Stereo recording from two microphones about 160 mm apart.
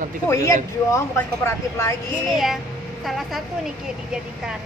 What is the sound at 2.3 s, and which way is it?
A woman's voice, centre (ahead or behind).